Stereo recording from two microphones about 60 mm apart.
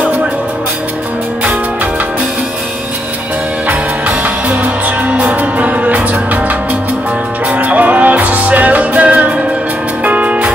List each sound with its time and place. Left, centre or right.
3.6 s music: right
7.4 s music: right